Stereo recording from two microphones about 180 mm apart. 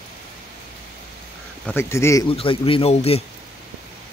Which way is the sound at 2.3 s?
30° left (ahead or behind).